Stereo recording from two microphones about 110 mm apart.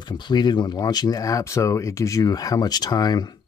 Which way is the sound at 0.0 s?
45° left (ahead or behind).